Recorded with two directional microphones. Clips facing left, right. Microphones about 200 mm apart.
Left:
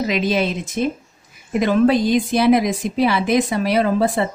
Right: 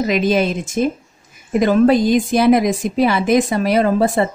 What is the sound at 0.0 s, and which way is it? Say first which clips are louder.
A woman's voice: right 3 dB; 45° right (ahead or behind).